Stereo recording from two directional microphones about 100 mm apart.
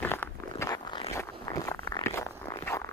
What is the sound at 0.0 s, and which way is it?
Zipper, 20° left (ahead or behind).